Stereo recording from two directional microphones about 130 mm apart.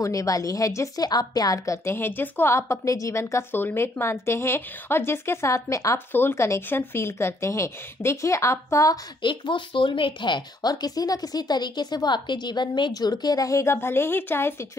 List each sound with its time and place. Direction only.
0.0 s a woman's voice: 25° left (ahead or behind)
9.2 s speech: 40° left (ahead or behind); by 14.7 s 20° left (ahead or behind)